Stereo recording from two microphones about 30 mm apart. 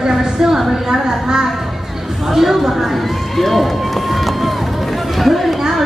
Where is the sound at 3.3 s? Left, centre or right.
Centre.